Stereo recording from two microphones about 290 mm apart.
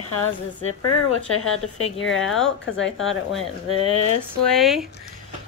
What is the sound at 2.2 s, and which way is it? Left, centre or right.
Speech, centre.